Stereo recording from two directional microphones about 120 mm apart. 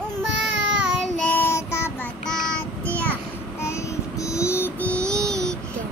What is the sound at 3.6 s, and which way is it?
Child singing, 25° left (ahead or behind).